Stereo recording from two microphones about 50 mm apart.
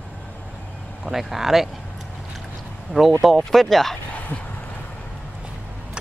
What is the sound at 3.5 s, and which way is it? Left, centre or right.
Speech, centre.